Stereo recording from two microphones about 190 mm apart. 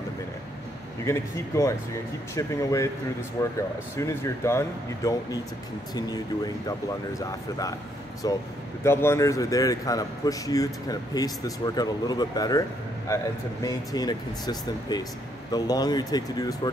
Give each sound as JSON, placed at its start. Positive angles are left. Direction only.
{"t": 1.0, "sound": "speech", "side_deg": 15}